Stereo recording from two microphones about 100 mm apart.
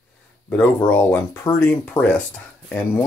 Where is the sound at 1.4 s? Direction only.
25° left (ahead or behind).